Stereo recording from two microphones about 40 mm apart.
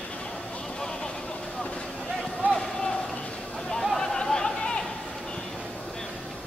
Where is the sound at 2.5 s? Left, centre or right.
Centre.